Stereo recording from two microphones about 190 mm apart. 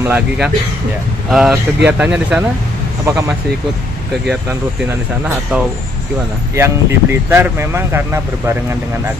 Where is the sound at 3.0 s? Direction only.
15° right (ahead or behind).